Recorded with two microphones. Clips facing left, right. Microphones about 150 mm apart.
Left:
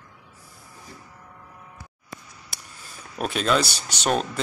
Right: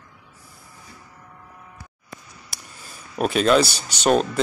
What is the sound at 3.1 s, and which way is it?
Speech, 5° right (ahead or behind).